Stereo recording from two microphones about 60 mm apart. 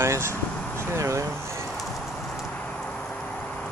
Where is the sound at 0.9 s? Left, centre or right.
Right.